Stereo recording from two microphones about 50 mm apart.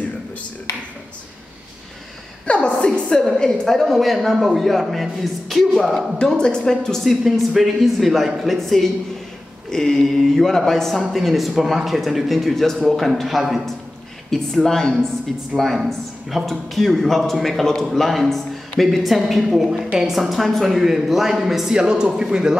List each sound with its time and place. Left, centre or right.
2.4 s a sound: left
2.8 s a sound: centre
3.3 s speech: centre
3.8 s speech: centre
5.9 s speech: centre
7.0 s speech: centre
14.3 s speech: centre
21.7 s speech: centre